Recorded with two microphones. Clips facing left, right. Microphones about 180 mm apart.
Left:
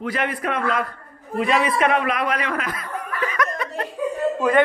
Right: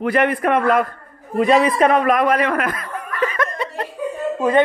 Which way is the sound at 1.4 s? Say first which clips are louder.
Right 5 dB; 35° right (ahead or behind).